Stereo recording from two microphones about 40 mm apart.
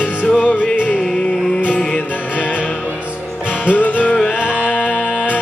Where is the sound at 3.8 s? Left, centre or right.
Left.